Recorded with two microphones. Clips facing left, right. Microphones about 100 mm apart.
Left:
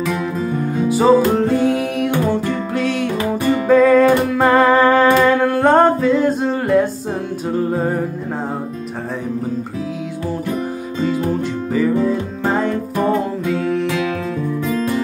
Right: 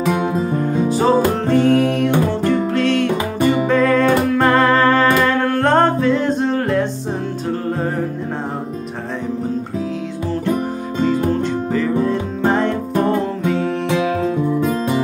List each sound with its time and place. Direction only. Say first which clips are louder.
0.8 s music: left 4 dB; 10° left (ahead or behind)
11.4 s music: left 1 dB; 5° left (ahead or behind)
13.8 s music: right 3 dB; 25° right (ahead or behind)